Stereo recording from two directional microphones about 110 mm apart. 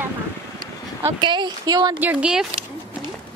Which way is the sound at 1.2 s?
45° right (ahead or behind).